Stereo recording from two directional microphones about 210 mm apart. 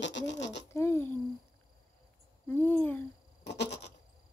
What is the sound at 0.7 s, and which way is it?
Speech, 10° left (ahead or behind).